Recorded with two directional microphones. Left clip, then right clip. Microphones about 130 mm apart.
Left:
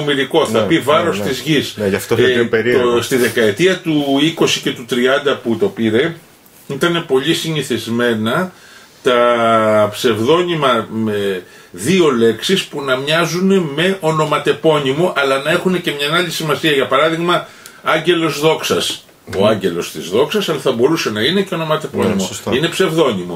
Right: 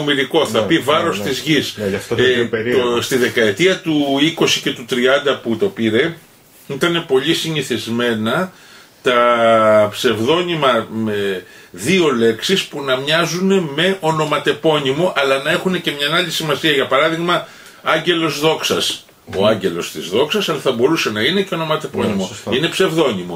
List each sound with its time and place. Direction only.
0.0 s speech: centre (ahead or behind)
1.8 s speech: 50° left (ahead or behind)
2.9 s speech: centre (ahead or behind)